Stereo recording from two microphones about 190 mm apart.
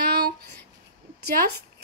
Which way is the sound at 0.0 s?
55° right (ahead or behind).